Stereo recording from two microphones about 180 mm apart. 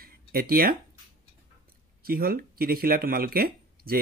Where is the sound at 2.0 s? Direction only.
55° right (ahead or behind).